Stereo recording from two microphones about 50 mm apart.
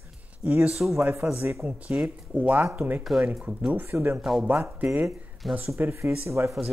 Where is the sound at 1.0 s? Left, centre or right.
Right.